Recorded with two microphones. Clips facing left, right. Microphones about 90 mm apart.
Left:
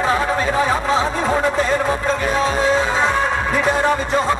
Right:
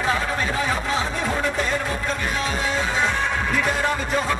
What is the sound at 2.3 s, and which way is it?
Music, 35° left (ahead or behind).